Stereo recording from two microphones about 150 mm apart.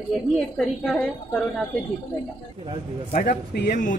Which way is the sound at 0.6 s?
5° left (ahead or behind).